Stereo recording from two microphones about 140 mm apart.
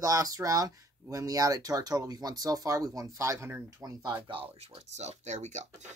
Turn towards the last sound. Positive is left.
turn(degrees=-55)  # may be behind; listen again after turning